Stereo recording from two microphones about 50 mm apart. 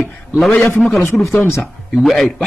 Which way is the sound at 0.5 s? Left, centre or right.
Left.